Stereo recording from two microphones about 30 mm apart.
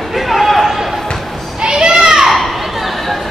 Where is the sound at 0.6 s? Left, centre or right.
Centre.